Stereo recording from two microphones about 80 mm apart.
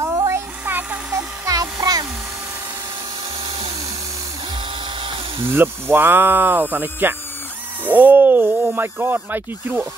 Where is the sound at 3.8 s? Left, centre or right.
Right.